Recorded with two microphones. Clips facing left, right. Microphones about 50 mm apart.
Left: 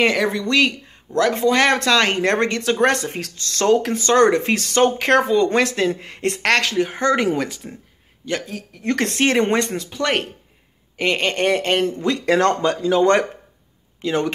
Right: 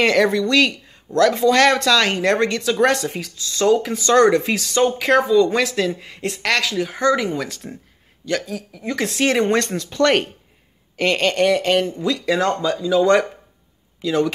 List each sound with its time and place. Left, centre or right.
0.0 s speech: centre; by 3.2 s left
3.2 s speech: left
3.6 s speech: left
7.4 s speech: centre
8.5 s speech: left
9.2 s speech: left
9.5 s speech: centre
11.0 s speech: left
12.0 s speech: left